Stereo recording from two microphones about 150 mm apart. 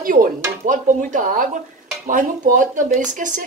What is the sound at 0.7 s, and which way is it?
Speech, 60° right (ahead or behind).